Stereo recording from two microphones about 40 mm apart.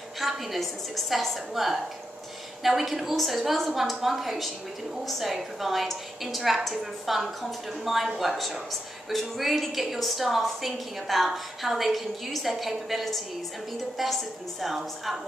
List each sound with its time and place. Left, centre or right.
0.2 s a woman's voice: centre